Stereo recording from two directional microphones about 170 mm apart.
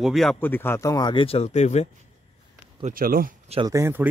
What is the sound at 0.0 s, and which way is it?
Speech, centre (ahead or behind).